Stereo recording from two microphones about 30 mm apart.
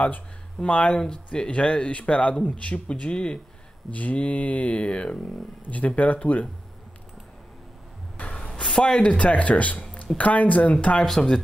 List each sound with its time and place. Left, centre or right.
0.6 s speech: left
1.0 s speech: left
1.5 s speech: left
3.9 s speech: left
5.7 s speech: left
8.2 s music: left
8.5 s speech: left
9.0 s speech: left
11.2 s speech: left